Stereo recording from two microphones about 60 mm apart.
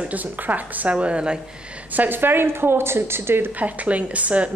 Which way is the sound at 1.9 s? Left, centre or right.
Right.